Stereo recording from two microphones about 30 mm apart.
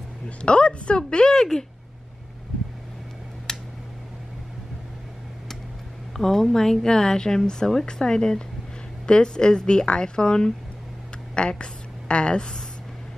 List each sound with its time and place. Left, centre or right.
0.4 s speech: left; by 1.7 s centre
3.5 s a sound: centre
6.1 s a woman's voice: centre; by 12.5 s left